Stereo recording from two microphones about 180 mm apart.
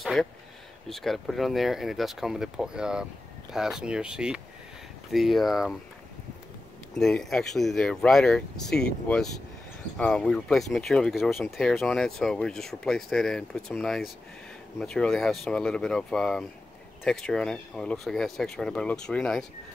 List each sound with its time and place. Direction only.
0.0 s speech: centre (ahead or behind)
7.0 s speech: 5° left (ahead or behind)